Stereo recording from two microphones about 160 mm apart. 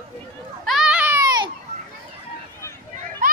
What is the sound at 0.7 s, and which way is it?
Baby cry, 5° right (ahead or behind).